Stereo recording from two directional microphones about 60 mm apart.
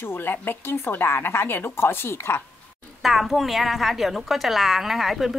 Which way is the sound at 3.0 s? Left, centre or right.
Centre.